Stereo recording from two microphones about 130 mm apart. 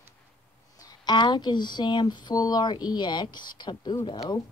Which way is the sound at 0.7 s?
35° left (ahead or behind).